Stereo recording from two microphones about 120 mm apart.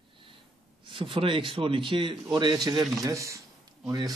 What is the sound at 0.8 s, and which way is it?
Speech, 45° right (ahead or behind).